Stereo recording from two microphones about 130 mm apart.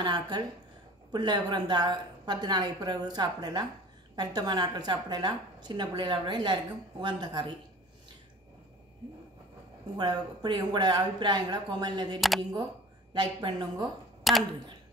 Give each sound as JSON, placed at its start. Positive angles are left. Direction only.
{"t": 0.0, "sound": "a woman's voice", "side_deg": -35}
{"t": 9.9, "sound": "a woman's voice", "side_deg": -30}
{"t": 12.2, "sound": "speech", "side_deg": 0}
{"t": 13.1, "sound": "a woman's voice", "side_deg": -35}
{"t": 14.3, "sound": "speech", "side_deg": 0}